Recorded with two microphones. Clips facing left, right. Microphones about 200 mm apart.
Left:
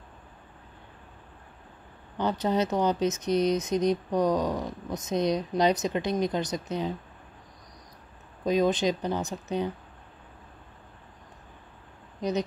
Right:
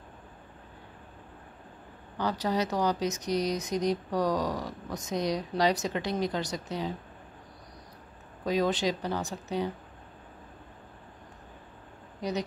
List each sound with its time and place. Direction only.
2.1 s speech: 25° left (ahead or behind)
8.5 s speech: 20° left (ahead or behind)
12.2 s a woman's voice: 20° left (ahead or behind)